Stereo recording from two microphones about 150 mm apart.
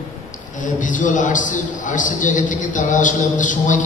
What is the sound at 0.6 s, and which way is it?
A man's voice, 60° left (ahead or behind).